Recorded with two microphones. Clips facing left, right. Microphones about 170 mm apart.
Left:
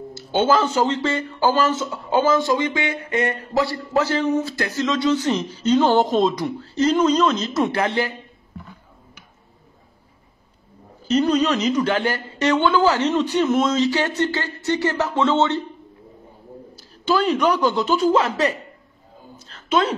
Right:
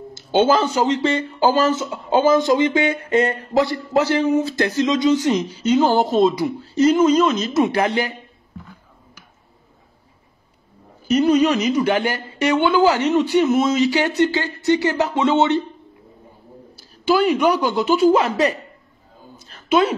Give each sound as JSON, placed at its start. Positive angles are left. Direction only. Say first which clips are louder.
{"t": 0.1, "sound": "speech", "louder": "right 2 dB", "side_deg": -20}
{"t": 11.1, "sound": "speech", "louder": "right 3 dB", "side_deg": -10}
{"t": 16.7, "sound": "a woman's voice", "louder": "right 3 dB", "side_deg": -10}